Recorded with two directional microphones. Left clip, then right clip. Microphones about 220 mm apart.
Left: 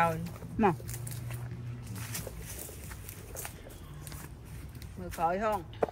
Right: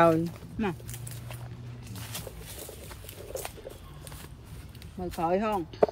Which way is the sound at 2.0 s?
15° right (ahead or behind).